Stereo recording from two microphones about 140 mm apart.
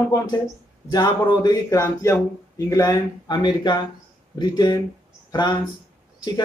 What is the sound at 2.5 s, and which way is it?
Speech, 25° left (ahead or behind).